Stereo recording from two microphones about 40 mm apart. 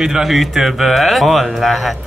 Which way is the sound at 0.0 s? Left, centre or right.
Centre.